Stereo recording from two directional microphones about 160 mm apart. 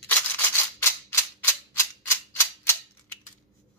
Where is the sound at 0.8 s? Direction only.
15° left (ahead or behind).